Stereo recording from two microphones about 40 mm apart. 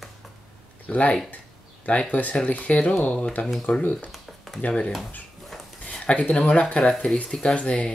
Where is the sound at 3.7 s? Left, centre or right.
Left.